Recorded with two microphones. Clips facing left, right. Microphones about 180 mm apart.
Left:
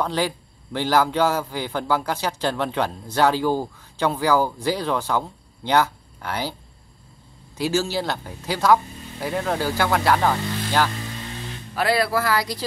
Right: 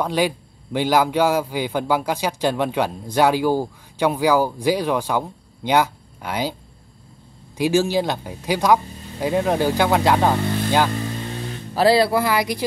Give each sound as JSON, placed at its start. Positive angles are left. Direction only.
{"t": 0.0, "sound": "a man's voice", "side_deg": -15}
{"t": 7.5, "sound": "a man's voice", "side_deg": -15}
{"t": 11.7, "sound": "speech", "side_deg": -30}